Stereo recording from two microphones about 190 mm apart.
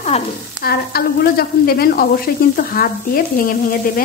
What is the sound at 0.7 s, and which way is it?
Frying, 55° left (ahead or behind).